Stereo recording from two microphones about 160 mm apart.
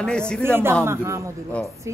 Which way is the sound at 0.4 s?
15° right (ahead or behind).